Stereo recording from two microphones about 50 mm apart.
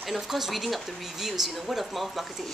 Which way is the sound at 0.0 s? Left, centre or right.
Centre.